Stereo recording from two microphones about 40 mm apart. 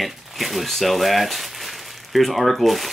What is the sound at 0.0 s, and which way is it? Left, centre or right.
Speech, centre.